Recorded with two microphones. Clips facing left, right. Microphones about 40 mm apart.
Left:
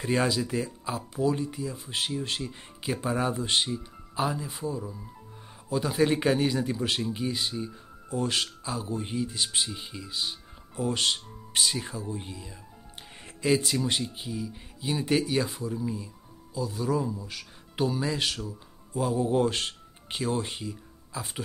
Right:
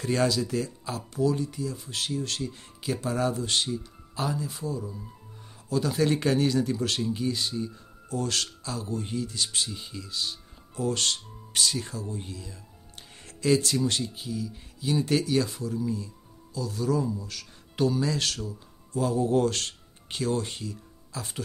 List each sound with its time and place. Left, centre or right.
0.0 s speech: centre